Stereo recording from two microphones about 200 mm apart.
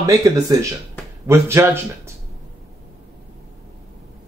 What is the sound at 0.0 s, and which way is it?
Speech, 15° right (ahead or behind).